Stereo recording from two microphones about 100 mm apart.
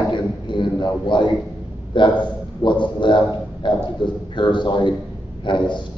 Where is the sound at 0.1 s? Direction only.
50° left (ahead or behind).